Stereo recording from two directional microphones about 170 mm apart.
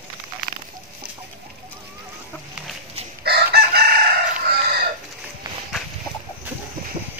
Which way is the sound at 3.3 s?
70° right (ahead or behind).